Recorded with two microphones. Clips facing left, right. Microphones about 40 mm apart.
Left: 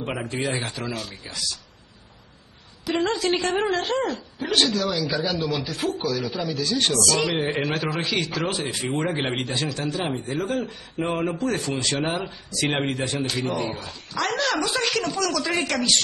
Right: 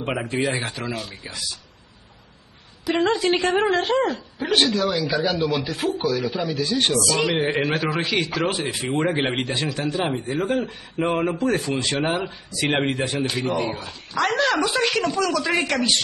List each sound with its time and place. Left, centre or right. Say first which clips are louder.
0.2 s speech: right 3 dB; centre
3.1 s speech: right 4 dB; centre